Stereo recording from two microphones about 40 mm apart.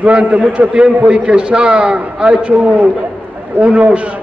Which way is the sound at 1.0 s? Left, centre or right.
Right.